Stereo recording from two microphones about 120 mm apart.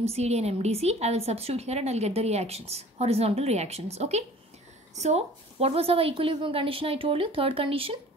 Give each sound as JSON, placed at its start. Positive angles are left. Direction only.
{"t": 0.0, "sound": "a woman's voice", "side_deg": -60}